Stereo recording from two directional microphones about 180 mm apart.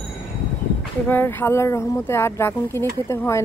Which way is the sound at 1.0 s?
10° left (ahead or behind).